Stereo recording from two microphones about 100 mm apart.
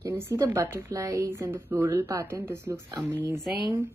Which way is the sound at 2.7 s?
35° right (ahead or behind).